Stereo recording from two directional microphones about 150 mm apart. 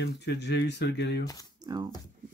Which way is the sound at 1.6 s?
25° right (ahead or behind).